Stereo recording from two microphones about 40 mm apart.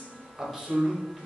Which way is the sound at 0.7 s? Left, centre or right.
Centre.